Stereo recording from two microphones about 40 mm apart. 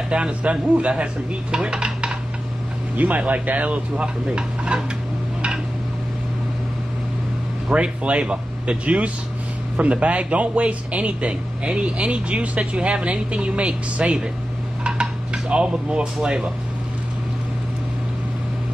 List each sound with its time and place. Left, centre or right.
0.1 s a man's voice: right
1.5 s dishes: right
3.0 s a man's voice: right
7.7 s a man's voice: right
14.8 s dishes: right